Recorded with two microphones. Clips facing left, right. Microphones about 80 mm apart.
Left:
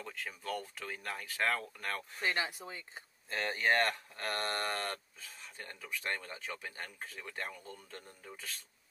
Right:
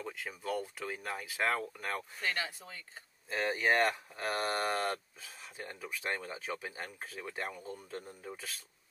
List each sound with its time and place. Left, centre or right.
0.0 s speech: centre
2.2 s speech: centre
3.3 s speech: centre